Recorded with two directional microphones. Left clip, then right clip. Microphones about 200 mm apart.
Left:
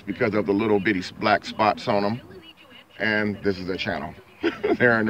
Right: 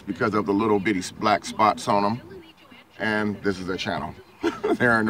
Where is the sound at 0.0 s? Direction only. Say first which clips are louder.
Even; 20° left (ahead or behind).